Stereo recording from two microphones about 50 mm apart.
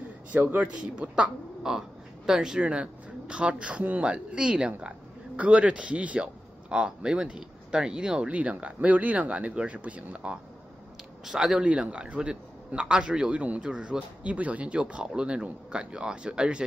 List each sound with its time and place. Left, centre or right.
0.3 s a man's voice: right
0.6 s a man's voice: right
1.6 s crow: centre
2.6 s a man's voice: right
11.2 s a man's voice: centre